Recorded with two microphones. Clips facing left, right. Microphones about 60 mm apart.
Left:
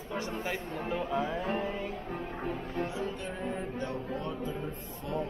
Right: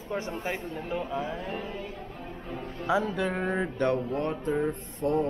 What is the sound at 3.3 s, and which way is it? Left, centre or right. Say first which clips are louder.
Mantra: right 6 dB; right.